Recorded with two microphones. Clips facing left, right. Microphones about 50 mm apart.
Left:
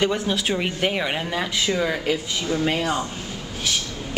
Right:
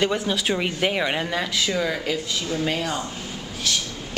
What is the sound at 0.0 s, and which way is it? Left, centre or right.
A woman's voice, centre.